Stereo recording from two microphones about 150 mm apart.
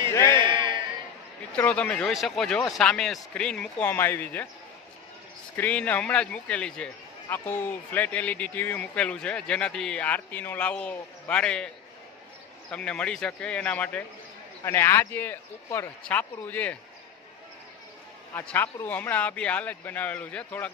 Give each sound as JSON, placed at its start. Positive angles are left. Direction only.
{"t": 0.1, "sound": "a sound", "side_deg": 20}
{"t": 0.4, "sound": "a sound", "side_deg": -30}
{"t": 1.6, "sound": "a man's voice", "side_deg": 10}
{"t": 5.6, "sound": "a man's voice", "side_deg": 10}
{"t": 12.7, "sound": "a man's voice", "side_deg": 5}
{"t": 18.3, "sound": "a man's voice", "side_deg": 10}